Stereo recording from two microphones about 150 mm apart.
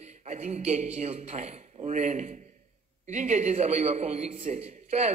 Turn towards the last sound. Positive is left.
turn(degrees=-45)  # may be behind; listen again after turning